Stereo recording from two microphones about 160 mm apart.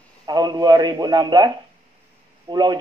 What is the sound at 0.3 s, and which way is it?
Speech, 25° right (ahead or behind).